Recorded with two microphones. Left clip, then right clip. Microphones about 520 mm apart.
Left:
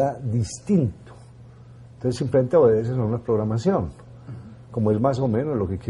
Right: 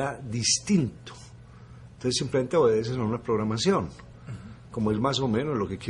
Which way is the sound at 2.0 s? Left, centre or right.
Left.